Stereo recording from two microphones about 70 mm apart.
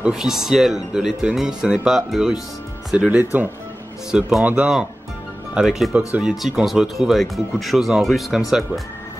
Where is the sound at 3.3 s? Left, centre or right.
Right.